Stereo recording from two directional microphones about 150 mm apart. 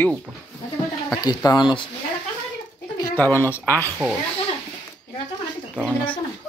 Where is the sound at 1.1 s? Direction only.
25° left (ahead or behind).